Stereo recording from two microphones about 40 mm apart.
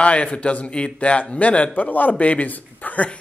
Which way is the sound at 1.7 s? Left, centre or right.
Left.